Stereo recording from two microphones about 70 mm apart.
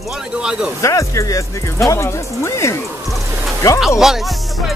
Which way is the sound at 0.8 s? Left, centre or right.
Left.